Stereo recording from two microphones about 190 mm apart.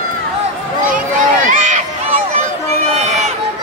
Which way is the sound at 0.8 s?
45° right (ahead or behind).